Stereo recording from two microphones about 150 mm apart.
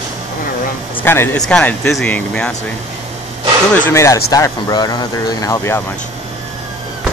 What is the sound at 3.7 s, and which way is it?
Speech, 15° left (ahead or behind).